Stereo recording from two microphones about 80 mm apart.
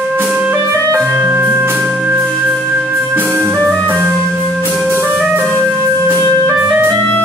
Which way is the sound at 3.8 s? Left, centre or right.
Right.